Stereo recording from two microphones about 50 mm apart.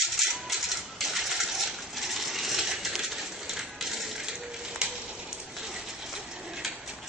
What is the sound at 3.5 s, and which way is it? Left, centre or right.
Water, centre.